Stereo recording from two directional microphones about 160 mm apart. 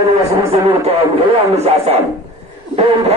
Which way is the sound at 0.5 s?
40° right (ahead or behind).